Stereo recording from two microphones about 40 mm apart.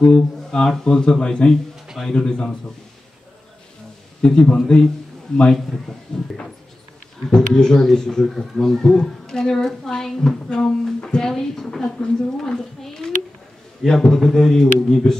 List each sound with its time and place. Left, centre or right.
0.0 s speech: centre
4.2 s a woman's voice: left